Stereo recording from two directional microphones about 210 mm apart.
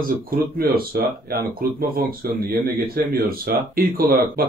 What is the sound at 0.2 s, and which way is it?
Speech, 45° right (ahead or behind).